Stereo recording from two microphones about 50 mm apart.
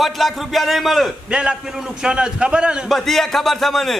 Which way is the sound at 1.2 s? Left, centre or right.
Centre.